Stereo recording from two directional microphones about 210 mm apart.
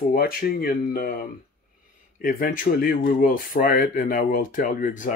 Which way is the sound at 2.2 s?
40° left (ahead or behind).